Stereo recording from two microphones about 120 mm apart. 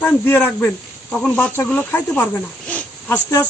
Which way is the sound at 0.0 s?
15° left (ahead or behind).